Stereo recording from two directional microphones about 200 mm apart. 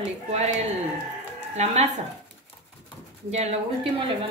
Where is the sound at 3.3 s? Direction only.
35° right (ahead or behind).